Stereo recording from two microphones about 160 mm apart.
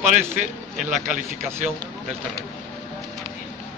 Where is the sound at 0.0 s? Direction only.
50° right (ahead or behind).